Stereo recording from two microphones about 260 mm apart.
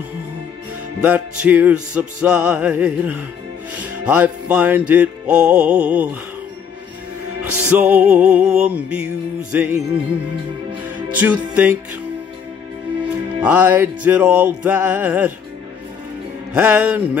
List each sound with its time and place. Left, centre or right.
1.0 s music: centre
7.4 s music: right
7.7 s music: centre
11.1 s music: centre
13.4 s music: centre
16.5 s music: centre